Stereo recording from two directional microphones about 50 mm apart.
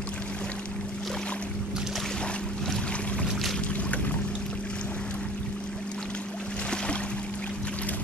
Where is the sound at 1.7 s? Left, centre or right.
Centre.